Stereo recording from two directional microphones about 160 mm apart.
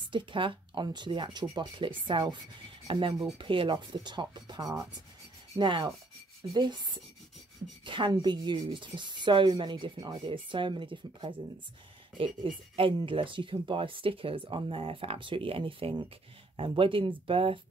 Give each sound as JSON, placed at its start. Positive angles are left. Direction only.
{"t": 0.1, "sound": "speech", "side_deg": -30}
{"t": 7.8, "sound": "speech", "side_deg": -30}
{"t": 12.7, "sound": "speech", "side_deg": -35}